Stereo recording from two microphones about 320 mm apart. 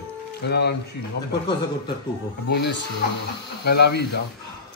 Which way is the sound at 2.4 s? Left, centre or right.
Left.